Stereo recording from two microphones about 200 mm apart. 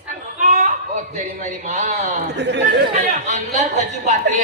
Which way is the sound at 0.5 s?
40° right (ahead or behind).